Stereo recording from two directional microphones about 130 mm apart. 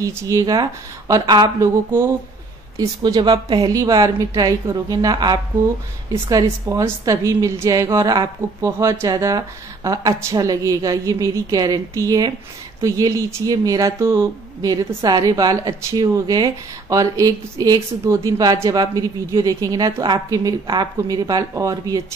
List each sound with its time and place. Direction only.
0.0 s speech: 25° right (ahead or behind)
2.8 s speech: 30° right (ahead or behind)